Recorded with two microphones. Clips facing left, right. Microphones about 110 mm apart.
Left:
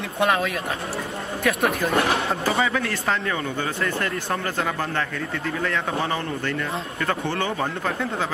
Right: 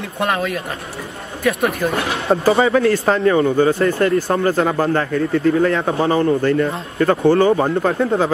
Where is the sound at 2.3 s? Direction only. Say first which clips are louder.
Right 9 dB; 30° right (ahead or behind).